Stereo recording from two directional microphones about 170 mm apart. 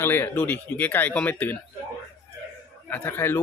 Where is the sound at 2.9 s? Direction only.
15° left (ahead or behind).